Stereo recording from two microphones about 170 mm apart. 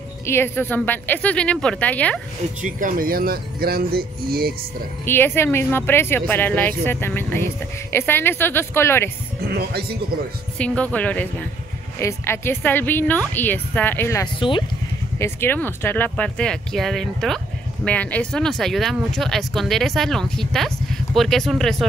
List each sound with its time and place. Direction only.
0.3 s speech: 15° left (ahead or behind)
2.6 s speech: 50° right (ahead or behind)
5.0 s speech: 15° left (ahead or behind)
9.4 s speech: 70° right (ahead or behind)
10.6 s speech: 5° left (ahead or behind)